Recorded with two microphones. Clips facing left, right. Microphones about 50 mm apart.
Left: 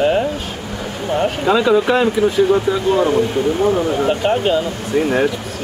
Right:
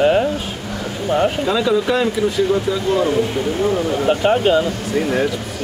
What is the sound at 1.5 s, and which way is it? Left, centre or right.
Speech, left.